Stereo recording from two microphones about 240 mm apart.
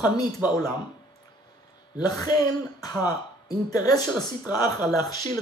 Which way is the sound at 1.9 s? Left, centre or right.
Centre.